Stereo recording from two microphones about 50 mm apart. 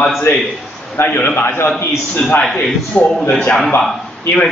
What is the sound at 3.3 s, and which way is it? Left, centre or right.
Speech, centre.